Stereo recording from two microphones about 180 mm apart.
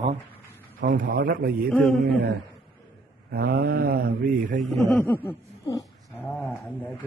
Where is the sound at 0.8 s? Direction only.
50° right (ahead or behind).